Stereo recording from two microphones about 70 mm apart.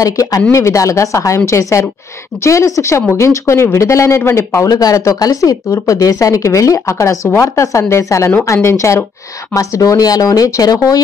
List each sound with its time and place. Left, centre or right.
0.0 s a woman's voice: left
4.6 s a woman's voice: left